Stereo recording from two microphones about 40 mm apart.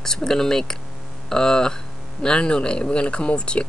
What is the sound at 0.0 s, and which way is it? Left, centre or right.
Speech, centre.